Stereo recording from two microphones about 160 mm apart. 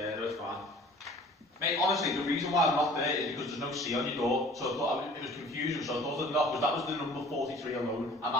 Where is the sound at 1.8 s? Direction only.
Centre (ahead or behind).